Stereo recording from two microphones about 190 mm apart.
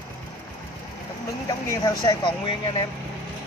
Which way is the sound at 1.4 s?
15° left (ahead or behind).